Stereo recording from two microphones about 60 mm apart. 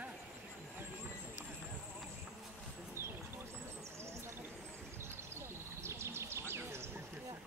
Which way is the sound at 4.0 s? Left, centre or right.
Right.